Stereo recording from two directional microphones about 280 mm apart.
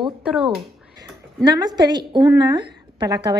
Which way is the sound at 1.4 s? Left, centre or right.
Centre.